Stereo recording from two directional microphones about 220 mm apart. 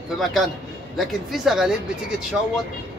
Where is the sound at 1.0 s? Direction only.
Centre (ahead or behind).